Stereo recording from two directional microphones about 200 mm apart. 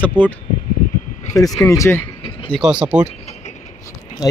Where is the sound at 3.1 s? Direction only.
35° left (ahead or behind).